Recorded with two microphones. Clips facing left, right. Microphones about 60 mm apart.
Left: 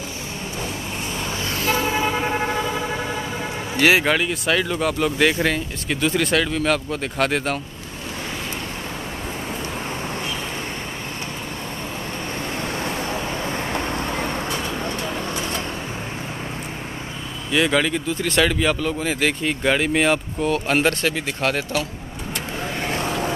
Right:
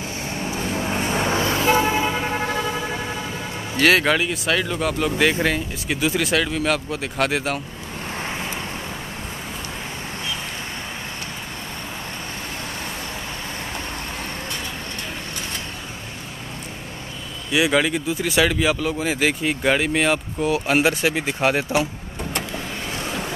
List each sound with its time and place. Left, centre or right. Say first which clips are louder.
0.7 s vehicle: right 6 dB; right
1.4 s vehicle: right 2 dB; right
2.0 s vehicle: left 1 dB; centre
3.8 s speech: even; centre
4.1 s speech: even; centre
13.7 s vehicle: left 6 dB; left
17.5 s speech: even; centre